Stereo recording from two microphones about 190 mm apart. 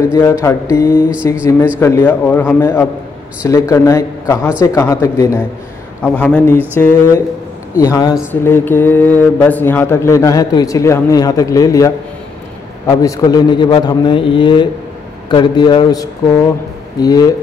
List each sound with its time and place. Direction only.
0.1 s a man's voice: 15° left (ahead or behind)